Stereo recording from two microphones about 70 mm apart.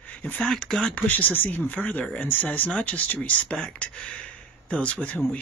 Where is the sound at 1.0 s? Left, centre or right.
Left.